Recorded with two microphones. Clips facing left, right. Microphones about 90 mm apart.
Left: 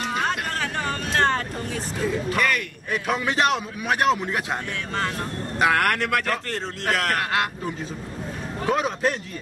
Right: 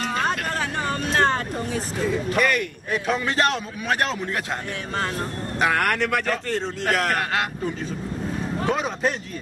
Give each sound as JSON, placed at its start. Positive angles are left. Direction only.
{"t": 0.6, "sound": "vehicle", "side_deg": -20}
{"t": 2.2, "sound": "a man's voice", "side_deg": -5}
{"t": 3.1, "sound": "a man's voice", "side_deg": 10}
{"t": 5.6, "sound": "a man's voice", "side_deg": 0}
{"t": 8.6, "sound": "a man's voice", "side_deg": 5}